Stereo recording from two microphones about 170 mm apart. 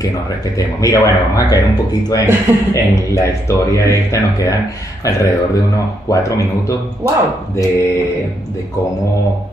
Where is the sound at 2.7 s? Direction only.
15° left (ahead or behind).